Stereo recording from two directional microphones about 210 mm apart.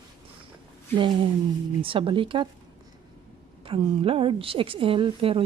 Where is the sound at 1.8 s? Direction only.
25° right (ahead or behind).